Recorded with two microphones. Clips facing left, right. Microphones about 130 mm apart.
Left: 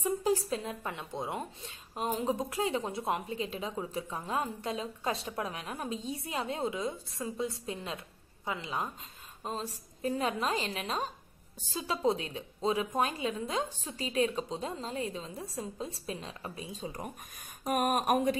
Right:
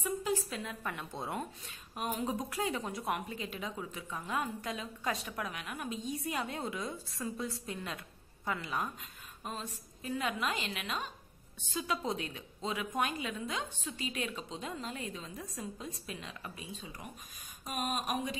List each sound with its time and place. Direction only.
0.0 s a woman's voice: 35° left (ahead or behind)
17.6 s speech: 55° left (ahead or behind)